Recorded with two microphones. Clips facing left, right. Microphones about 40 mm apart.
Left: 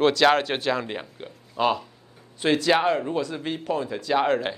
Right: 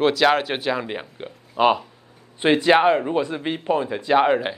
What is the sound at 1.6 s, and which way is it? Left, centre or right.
Speech, right.